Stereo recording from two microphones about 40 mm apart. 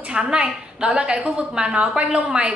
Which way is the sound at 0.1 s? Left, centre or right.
Right.